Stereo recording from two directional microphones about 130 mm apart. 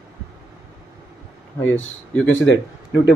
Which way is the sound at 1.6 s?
15° left (ahead or behind).